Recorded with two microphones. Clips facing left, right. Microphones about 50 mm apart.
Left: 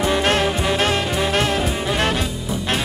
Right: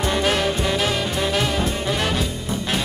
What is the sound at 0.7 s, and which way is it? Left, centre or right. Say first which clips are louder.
Music: left 3 dB; left.